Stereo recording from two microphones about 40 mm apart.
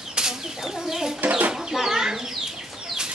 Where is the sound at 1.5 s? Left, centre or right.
Centre.